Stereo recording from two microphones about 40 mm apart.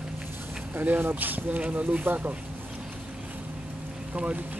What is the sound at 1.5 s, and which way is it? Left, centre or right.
Speech, right.